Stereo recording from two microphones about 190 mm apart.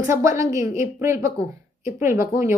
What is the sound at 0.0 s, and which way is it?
Speech, 15° right (ahead or behind).